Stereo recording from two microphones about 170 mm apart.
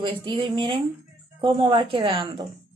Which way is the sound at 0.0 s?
30° right (ahead or behind).